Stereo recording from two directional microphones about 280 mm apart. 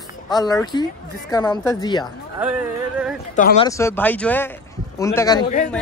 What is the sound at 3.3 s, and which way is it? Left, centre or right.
Speech, left.